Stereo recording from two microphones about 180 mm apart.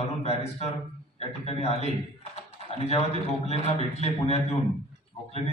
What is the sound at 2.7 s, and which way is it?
A man's voice, 35° left (ahead or behind).